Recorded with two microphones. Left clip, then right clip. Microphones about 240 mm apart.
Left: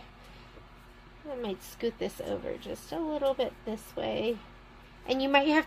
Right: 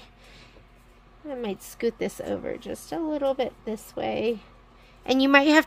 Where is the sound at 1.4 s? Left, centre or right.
Right.